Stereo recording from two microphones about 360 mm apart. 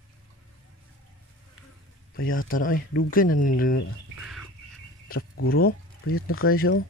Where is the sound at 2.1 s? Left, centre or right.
Left.